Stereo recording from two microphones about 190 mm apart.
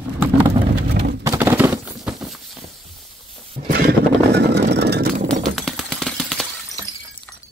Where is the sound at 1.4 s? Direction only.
10° right (ahead or behind).